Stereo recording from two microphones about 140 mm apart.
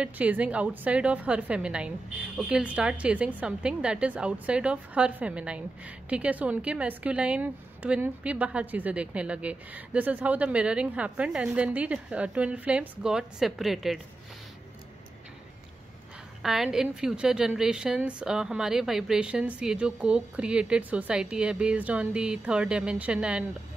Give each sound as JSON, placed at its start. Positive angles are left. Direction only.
{"t": 0.0, "sound": "a woman's voice", "side_deg": -10}
{"t": 16.4, "sound": "a woman's voice", "side_deg": -5}